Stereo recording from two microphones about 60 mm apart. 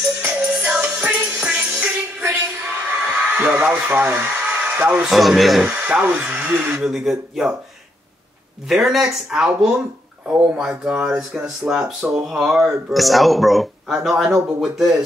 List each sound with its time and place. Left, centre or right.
0.2 s music: right
1.8 s a sound: right
3.4 s speech: right
4.1 s speech: right
4.4 s hair dryer: right
5.0 s speech: centre
5.6 s speech: right
6.8 s speech: centre
8.6 s speech: centre